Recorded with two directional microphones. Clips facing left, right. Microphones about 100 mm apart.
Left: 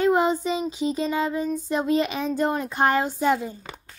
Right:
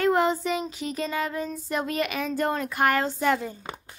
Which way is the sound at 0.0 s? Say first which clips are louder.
Left 2 dB; 15° left (ahead or behind).